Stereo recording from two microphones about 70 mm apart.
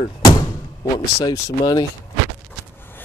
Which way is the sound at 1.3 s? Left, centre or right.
Left.